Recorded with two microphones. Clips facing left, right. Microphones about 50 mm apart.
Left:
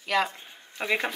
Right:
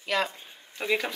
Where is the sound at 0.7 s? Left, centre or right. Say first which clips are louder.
Even; centre.